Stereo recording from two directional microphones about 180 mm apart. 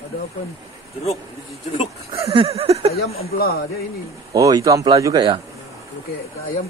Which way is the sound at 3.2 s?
60° left (ahead or behind).